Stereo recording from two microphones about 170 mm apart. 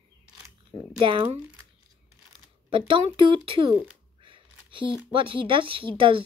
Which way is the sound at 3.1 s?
30° right (ahead or behind).